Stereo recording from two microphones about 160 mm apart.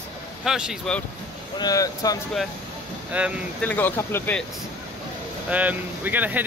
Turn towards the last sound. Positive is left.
turn(degrees=-10)  # may be behind; listen again after turning